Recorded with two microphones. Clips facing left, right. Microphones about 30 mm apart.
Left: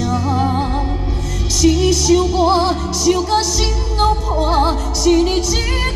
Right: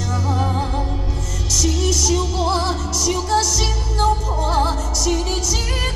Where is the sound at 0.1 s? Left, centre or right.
Centre.